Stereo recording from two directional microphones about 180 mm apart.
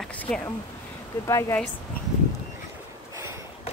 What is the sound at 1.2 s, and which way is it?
Speech, 15° left (ahead or behind).